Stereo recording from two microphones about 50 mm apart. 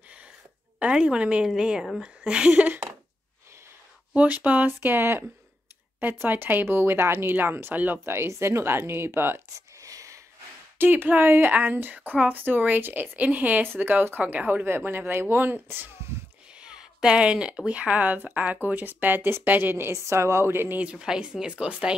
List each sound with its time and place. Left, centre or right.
0.7 s a woman's voice: right
2.5 s a woman's voice: right
4.1 s a woman's voice: right
4.6 s a woman's voice: right
7.7 s a woman's voice: right
8.0 s a woman's voice: right
8.3 s speech: right
9.8 s a sound: right
10.8 s a woman's voice: right
14.7 s a woman's voice: right
16.5 s a woman's voice: centre; by 19.9 s right
19.9 s a woman's voice: right
20.7 s a woman's voice: right
21.0 s speech: centre